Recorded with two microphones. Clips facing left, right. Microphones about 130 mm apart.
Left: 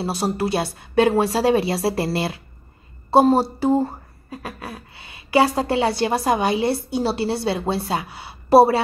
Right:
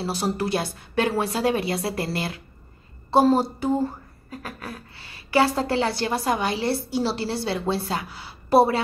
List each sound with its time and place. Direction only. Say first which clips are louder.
0.0 s speech: left 3 dB; 25° left (ahead or behind)